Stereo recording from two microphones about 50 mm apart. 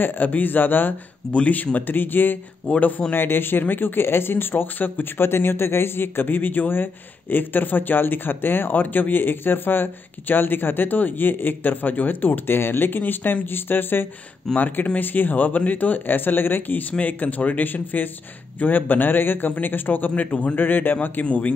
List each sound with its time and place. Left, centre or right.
0.0 s speech: left
2.7 s a man's voice: left
3.1 s speech: left
20.2 s a man's voice: left
20.5 s speech: left